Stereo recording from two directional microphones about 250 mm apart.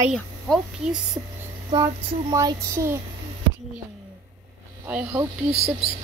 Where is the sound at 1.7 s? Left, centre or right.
Centre.